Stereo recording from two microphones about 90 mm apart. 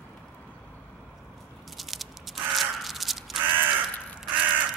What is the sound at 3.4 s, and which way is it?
Crow, 20° right (ahead or behind).